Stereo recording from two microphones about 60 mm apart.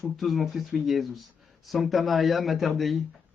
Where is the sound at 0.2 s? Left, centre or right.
Centre.